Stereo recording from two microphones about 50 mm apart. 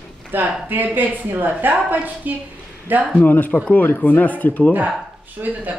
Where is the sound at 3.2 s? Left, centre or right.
Left.